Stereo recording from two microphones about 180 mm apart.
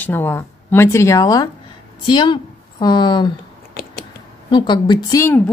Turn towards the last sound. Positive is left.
turn(degrees=15)  # may be behind; listen again after turning